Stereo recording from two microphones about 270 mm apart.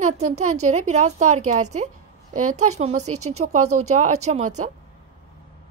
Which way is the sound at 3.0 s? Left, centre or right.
Right.